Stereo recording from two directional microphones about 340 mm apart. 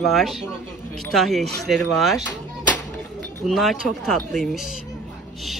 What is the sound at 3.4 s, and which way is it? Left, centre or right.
Speech, centre.